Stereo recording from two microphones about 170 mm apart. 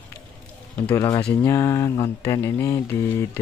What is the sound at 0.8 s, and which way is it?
Speech, 20° left (ahead or behind).